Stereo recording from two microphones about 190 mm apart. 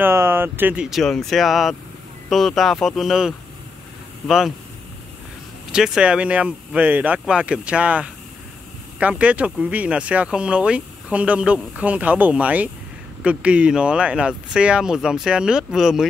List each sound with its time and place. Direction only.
0.0 s speech: 10° right (ahead or behind)
5.7 s speech: 5° right (ahead or behind)